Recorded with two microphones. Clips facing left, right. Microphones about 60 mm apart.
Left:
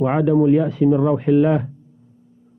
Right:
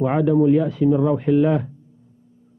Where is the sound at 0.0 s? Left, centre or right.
Left.